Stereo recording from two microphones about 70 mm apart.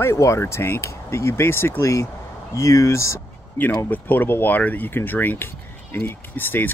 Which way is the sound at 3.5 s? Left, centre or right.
Left.